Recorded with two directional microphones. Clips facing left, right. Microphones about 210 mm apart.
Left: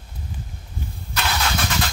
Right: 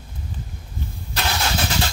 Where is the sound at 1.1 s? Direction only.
30° right (ahead or behind).